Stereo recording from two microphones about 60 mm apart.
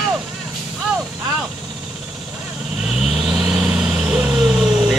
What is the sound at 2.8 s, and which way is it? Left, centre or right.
Vehicle, centre.